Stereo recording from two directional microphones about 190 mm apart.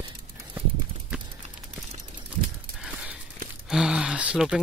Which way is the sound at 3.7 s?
5° right (ahead or behind).